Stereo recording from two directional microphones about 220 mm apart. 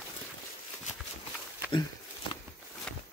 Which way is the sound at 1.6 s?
10° right (ahead or behind).